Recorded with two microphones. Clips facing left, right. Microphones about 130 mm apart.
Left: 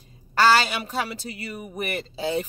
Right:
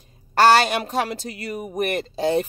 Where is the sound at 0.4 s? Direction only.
65° right (ahead or behind).